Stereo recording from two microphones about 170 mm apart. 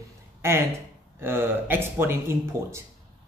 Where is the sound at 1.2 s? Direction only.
10° right (ahead or behind).